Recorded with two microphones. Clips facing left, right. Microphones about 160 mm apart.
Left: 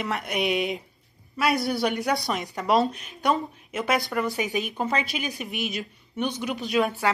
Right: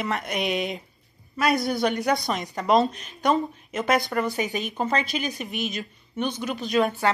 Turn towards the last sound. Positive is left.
turn(degrees=0)  # may be behind; listen again after turning